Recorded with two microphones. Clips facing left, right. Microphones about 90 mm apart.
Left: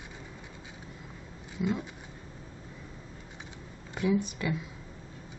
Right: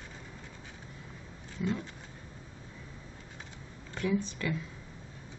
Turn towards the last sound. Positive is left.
turn(degrees=15)  # may be behind; listen again after turning